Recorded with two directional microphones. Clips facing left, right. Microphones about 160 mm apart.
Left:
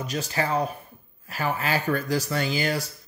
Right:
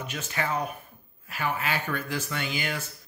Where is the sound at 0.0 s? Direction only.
35° left (ahead or behind).